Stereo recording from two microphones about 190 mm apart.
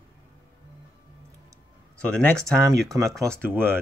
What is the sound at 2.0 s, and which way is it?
Speech, 5° left (ahead or behind).